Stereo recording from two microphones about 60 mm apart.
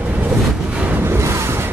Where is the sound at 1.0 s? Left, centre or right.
Right.